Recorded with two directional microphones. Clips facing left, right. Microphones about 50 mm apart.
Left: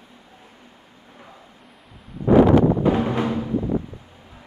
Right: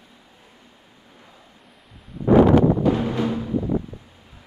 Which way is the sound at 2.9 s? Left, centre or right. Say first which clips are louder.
Left 1 dB; left.